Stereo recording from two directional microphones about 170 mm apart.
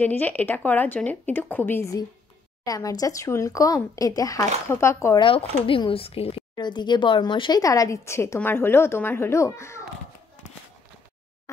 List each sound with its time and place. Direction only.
0.0 s speech: 10° left (ahead or behind)
5.2 s speech: 30° left (ahead or behind)